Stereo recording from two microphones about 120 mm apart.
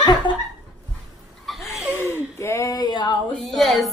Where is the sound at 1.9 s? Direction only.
20° left (ahead or behind); by 3.3 s 40° left (ahead or behind).